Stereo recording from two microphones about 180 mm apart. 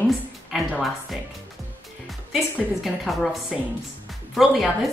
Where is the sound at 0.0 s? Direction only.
Centre (ahead or behind).